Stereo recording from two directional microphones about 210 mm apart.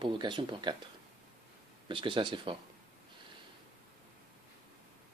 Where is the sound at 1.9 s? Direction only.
25° right (ahead or behind).